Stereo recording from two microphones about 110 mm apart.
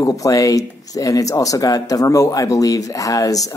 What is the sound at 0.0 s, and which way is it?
Speech, 30° left (ahead or behind).